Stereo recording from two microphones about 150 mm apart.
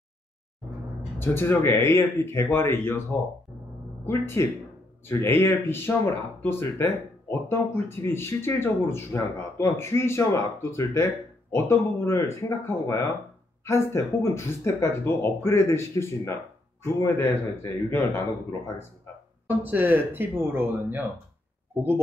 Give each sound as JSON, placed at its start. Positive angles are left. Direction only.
{"t": 1.2, "sound": "speech", "side_deg": 15}
{"t": 19.6, "sound": "speech", "side_deg": -15}